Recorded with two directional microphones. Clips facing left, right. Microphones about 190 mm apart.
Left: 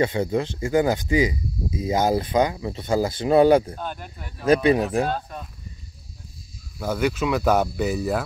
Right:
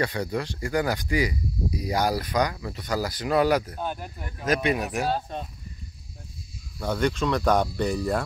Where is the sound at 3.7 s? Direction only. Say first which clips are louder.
Right 1 dB; 10° right (ahead or behind).